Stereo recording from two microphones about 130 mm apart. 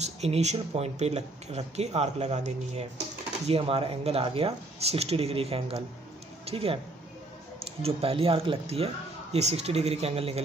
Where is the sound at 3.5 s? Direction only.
45° right (ahead or behind).